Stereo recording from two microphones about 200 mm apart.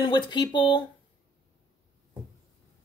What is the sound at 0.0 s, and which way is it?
Speech, 25° left (ahead or behind).